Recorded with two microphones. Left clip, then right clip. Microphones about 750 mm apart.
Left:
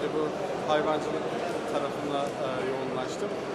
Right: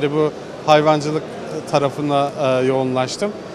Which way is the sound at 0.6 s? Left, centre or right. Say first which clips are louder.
Right 14 dB; right.